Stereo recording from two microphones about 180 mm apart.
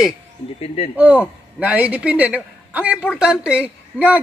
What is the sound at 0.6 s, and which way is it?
Speech, 35° left (ahead or behind).